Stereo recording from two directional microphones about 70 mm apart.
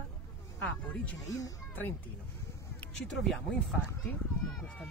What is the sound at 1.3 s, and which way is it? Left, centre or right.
Speech, left.